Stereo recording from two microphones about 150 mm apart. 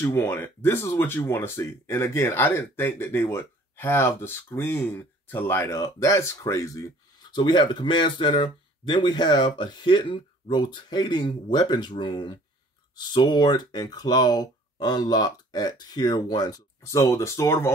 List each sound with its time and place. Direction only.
0.0 s speech: 15° left (ahead or behind)